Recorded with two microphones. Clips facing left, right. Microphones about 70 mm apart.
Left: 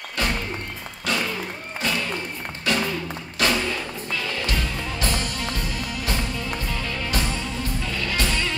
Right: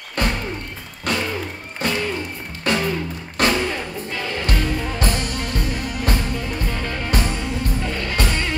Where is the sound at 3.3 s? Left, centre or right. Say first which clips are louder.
Right 3 dB; right.